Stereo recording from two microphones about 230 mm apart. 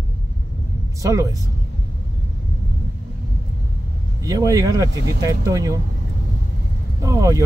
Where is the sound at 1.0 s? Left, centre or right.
Centre.